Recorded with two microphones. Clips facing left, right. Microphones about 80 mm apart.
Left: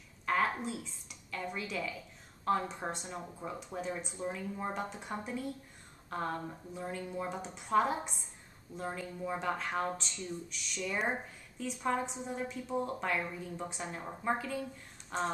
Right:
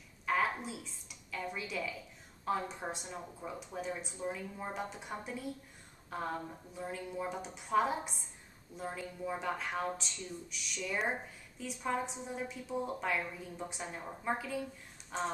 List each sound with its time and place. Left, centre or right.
0.3 s a woman's voice: centre